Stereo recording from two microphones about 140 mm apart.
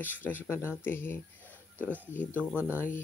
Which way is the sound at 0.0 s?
15° left (ahead or behind).